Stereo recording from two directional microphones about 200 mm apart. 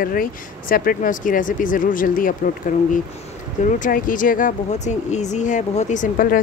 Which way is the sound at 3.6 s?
40° left (ahead or behind).